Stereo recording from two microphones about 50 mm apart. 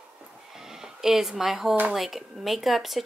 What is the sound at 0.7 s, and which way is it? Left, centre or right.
Speech, centre.